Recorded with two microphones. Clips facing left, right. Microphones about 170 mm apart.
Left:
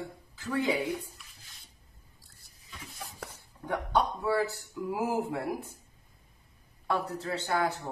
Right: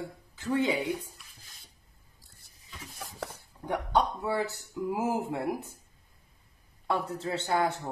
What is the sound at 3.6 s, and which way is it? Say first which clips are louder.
Speech: right 1 dB; 20° right (ahead or behind).